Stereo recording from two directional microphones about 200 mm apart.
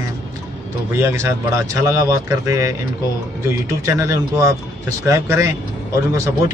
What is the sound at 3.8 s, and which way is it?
Speech, 15° right (ahead or behind).